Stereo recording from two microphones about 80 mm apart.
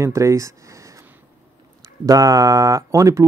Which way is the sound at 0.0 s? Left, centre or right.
Right.